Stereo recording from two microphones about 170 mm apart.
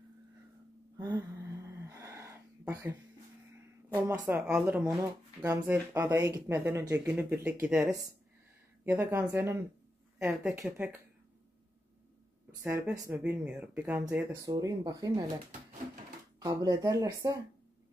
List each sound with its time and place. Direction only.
1.1 s a sound: 15° right (ahead or behind)
4.6 s speech: 10° right (ahead or behind)
12.4 s speech: 15° right (ahead or behind)
16.4 s speech: 20° right (ahead or behind)